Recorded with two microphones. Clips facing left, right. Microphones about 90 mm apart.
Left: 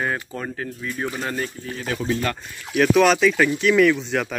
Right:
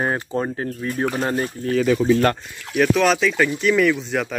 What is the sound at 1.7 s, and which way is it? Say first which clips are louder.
Speech: right 11 dB; 90° right.